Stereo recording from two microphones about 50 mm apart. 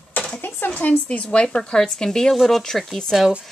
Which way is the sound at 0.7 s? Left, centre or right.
Left.